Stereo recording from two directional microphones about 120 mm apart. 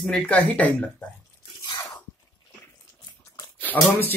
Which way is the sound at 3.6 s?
15° left (ahead or behind).